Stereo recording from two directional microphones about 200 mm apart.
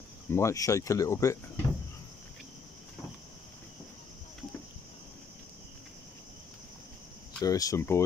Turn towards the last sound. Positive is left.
turn(degrees=15)  # may be behind; listen again after turning